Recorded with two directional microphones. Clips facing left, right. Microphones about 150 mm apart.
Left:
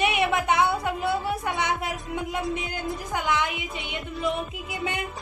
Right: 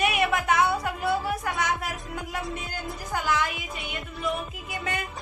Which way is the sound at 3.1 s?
20° left (ahead or behind).